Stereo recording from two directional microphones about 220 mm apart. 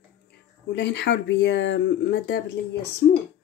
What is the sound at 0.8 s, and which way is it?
Speech, 55° left (ahead or behind).